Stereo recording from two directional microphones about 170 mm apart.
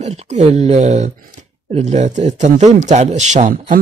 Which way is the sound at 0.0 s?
40° right (ahead or behind).